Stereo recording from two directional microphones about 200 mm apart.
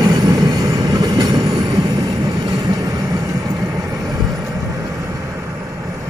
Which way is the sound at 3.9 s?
20° right (ahead or behind).